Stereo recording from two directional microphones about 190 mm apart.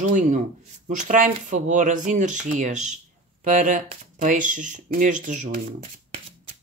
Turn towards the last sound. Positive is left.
turn(degrees=-40)  # may be behind; listen again after turning